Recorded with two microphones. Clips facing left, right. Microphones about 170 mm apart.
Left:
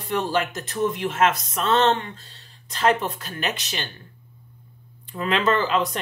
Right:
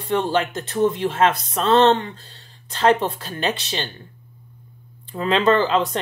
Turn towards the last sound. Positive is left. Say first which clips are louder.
# right 4 dB
turn(degrees=-30)  # may be behind; listen again after turning